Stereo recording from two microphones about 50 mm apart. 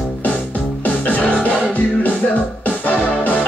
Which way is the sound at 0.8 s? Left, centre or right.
Left.